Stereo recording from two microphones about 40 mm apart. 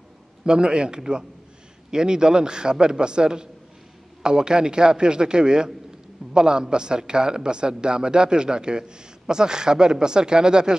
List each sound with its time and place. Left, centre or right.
0.5 s a man's voice: right